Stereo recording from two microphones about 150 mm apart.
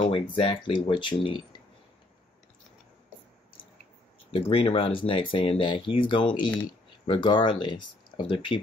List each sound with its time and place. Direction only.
0.0 s speech: 35° left (ahead or behind)
4.4 s speech: 35° left (ahead or behind)